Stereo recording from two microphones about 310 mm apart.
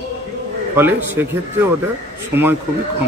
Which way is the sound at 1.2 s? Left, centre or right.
Centre.